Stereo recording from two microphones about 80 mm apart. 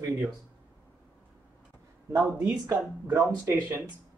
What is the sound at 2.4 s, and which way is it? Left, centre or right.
Speech, right.